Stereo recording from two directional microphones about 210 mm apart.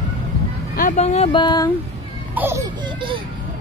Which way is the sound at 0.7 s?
35° left (ahead or behind).